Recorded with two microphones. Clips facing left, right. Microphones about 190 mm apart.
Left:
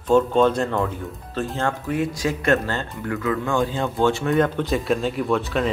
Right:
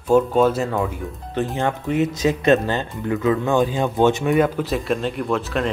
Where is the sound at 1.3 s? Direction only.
20° right (ahead or behind).